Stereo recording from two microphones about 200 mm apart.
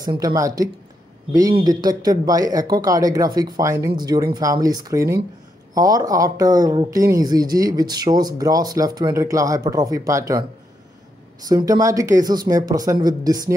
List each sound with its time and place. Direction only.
0.0 s speech: 20° right (ahead or behind)
11.4 s speech: 20° right (ahead or behind)